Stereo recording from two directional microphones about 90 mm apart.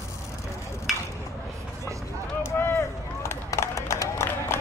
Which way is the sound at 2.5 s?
25° left (ahead or behind).